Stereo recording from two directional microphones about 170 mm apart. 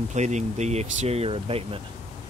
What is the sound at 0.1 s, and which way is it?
Speech, 45° right (ahead or behind).